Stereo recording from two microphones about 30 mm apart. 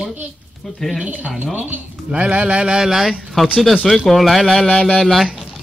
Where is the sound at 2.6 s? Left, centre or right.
Right.